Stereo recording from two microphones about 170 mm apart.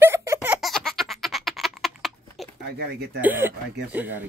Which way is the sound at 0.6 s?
Centre (ahead or behind).